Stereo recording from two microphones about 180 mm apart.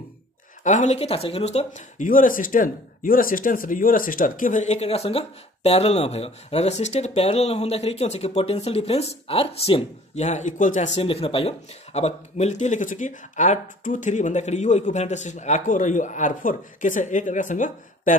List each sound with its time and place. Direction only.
0.7 s speech: 40° left (ahead or behind)